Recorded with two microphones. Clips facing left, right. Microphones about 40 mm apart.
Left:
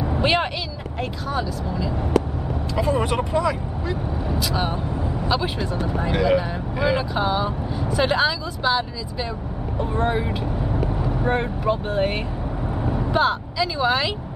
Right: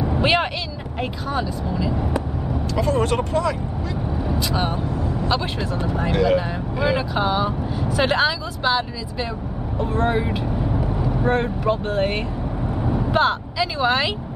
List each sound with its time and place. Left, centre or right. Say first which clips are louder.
0.0 s vehicle: right 1 dB; centre
1.3 s speech: right 1 dB; centre
2.7 s speech: right 1 dB; centre
4.3 s speech: right 1 dB; centre
4.9 s vehicle: right 2 dB; centre
5.3 s speech: left 2 dB; centre
6.8 s speech: right 1 dB; centre
12.8 s vehicle: right 2 dB; centre
13.1 s speech: right 1 dB; centre